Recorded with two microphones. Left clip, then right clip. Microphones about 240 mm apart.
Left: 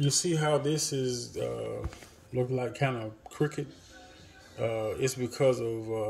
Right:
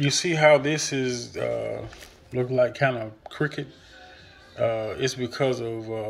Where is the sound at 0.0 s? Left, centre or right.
Centre.